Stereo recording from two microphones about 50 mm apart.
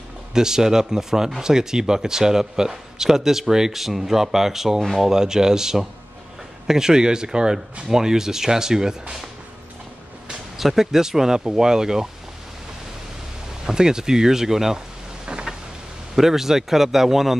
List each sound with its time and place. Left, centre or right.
0.3 s speech: centre
10.6 s speech: centre
13.7 s speech: centre
15.2 s a sound: centre
16.2 s speech: centre